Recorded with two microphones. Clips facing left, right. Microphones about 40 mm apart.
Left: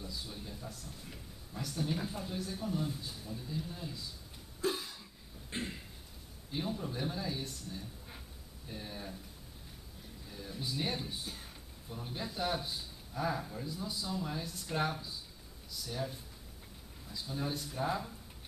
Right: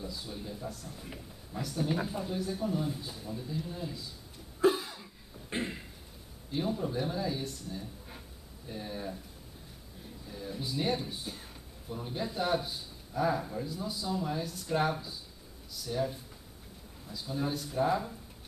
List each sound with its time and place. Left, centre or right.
0.0 s speech: centre
0.8 s speech: centre
1.6 s speech: centre
4.6 s cough: centre
5.5 s a sound: centre
6.5 s speech: centre
10.2 s speech: centre